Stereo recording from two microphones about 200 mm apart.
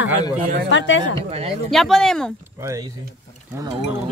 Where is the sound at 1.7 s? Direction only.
Centre (ahead or behind).